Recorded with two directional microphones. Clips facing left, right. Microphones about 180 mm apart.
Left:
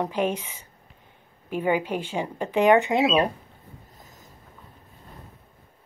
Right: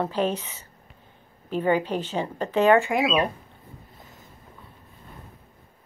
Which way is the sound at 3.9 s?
40° left (ahead or behind).